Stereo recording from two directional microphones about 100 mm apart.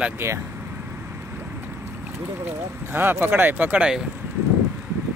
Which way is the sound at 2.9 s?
20° right (ahead or behind).